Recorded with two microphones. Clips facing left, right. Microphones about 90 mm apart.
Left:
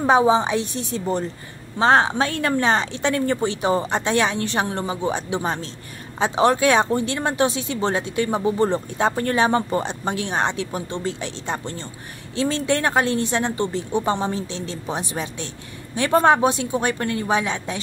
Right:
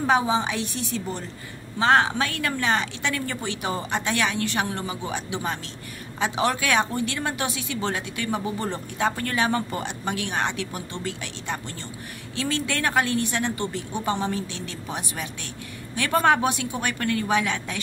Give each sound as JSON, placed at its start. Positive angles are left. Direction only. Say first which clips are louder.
{"t": 0.0, "sound": "a woman's voice", "louder": "left 5 dB", "side_deg": 30}